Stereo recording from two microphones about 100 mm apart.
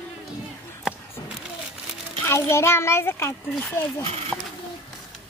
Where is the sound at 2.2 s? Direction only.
25° left (ahead or behind).